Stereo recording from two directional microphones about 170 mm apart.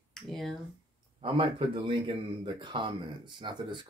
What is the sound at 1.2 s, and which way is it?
Speech, 30° right (ahead or behind).